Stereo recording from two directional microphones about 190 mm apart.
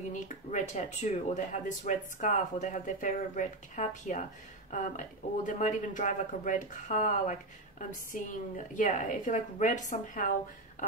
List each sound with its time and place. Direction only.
0.1 s speech: 40° left (ahead or behind)